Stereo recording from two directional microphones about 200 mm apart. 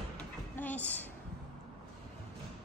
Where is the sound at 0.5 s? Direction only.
10° left (ahead or behind).